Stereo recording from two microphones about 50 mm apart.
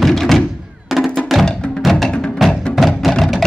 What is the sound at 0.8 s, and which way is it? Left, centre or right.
Music, centre.